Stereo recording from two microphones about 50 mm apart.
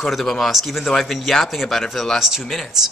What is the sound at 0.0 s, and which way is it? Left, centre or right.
Speech, centre.